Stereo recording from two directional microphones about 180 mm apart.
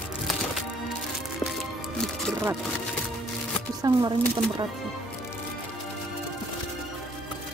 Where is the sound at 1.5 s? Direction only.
Centre (ahead or behind).